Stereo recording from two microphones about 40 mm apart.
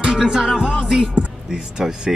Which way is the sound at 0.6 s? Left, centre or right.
Centre.